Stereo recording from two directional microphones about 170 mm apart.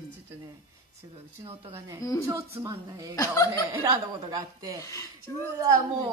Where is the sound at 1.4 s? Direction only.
35° right (ahead or behind).